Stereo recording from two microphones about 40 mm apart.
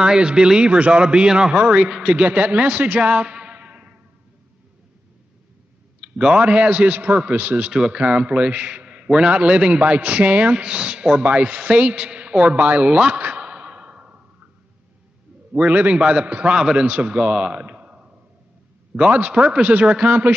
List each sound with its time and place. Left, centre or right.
0.0 s a man's voice: right
1.6 s a man's voice: right
1.9 s a man's voice: right
2.2 s a man's voice: right
3.4 s music: right
5.9 s a man's voice: right
7.7 s a man's voice: right
9.3 s a man's voice: right
13.2 s a sound: right
15.5 s a man's voice: right